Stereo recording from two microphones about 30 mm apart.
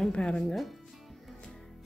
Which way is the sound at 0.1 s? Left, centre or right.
Left.